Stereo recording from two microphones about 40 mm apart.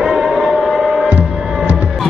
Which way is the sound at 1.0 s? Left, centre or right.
Right.